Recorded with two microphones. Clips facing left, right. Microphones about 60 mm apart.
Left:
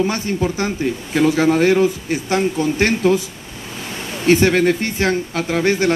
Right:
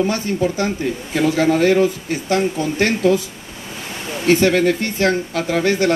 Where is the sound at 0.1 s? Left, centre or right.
Left.